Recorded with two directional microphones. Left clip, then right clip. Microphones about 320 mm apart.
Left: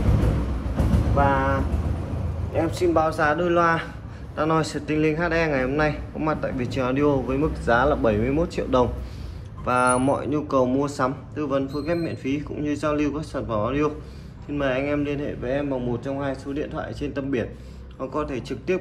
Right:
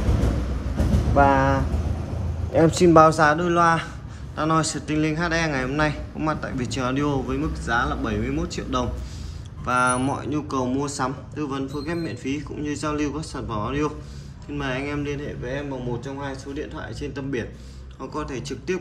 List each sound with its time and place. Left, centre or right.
1.1 s vehicle: right
2.5 s a man's voice: right; by 18.8 s centre